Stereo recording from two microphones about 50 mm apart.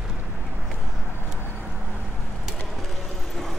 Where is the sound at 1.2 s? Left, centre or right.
Centre.